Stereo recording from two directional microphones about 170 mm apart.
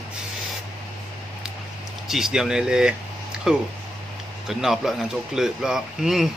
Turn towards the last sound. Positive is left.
turn(degrees=0)  # may be behind; listen again after turning